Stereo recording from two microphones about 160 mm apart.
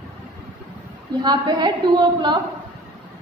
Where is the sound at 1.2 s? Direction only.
25° right (ahead or behind).